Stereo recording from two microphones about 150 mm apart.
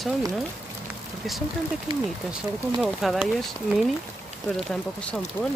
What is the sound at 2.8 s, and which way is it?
Speech, centre (ahead or behind).